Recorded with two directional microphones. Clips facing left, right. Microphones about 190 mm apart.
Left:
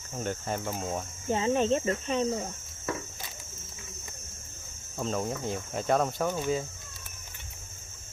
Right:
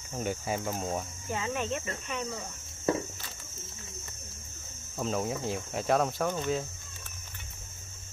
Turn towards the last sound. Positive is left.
turn(degrees=5)  # may be behind; listen again after turning